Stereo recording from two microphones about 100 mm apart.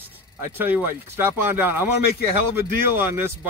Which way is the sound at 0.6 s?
20° right (ahead or behind).